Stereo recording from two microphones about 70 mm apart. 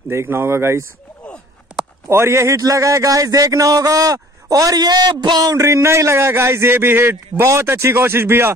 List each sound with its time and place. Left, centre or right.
0.1 s a man's voice: right
2.0 s a man's voice: right
2.5 s speech: right
5.6 s a man's voice: right